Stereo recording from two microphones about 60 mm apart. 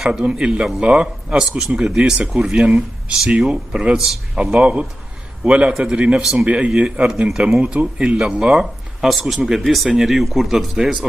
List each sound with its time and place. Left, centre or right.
0.2 s a man's voice: centre